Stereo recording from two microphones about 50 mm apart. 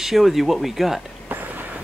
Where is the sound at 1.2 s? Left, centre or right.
Right.